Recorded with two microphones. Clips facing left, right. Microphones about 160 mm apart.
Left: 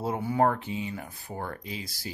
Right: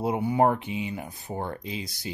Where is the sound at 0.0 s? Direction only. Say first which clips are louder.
Right 3 dB; 15° right (ahead or behind).